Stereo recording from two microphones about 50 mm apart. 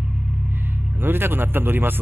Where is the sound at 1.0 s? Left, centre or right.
Right.